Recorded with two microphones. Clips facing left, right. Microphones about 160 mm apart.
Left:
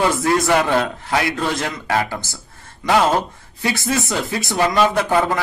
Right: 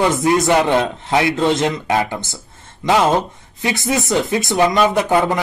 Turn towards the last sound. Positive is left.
turn(degrees=-20)  # may be behind; listen again after turning